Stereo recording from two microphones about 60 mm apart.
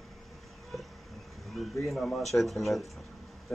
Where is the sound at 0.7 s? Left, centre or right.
Centre.